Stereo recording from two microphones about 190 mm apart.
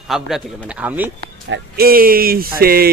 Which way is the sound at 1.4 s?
65° right (ahead or behind).